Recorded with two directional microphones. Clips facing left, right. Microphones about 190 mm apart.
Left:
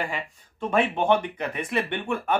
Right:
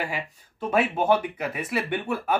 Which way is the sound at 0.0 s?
10° right (ahead or behind).